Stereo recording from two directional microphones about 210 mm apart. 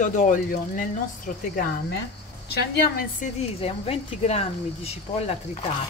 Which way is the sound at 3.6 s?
30° left (ahead or behind).